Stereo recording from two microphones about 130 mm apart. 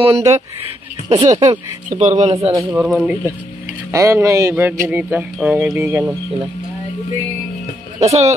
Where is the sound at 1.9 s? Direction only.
65° right (ahead or behind).